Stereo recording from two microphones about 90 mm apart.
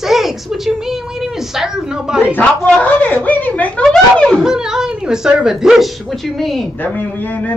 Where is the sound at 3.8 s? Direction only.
5° left (ahead or behind).